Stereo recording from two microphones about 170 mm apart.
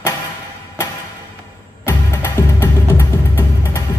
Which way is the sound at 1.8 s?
15° left (ahead or behind).